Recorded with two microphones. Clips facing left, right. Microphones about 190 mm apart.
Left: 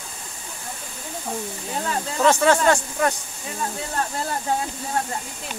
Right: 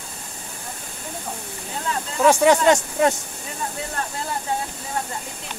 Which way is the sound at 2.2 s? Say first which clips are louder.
Right 2 dB; 15° right (ahead or behind).